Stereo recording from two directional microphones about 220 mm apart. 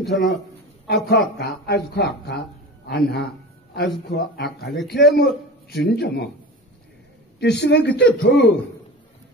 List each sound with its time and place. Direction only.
0.0 s a man's voice: centre (ahead or behind)
0.8 s speech: 45° left (ahead or behind)
7.3 s speech: 50° left (ahead or behind)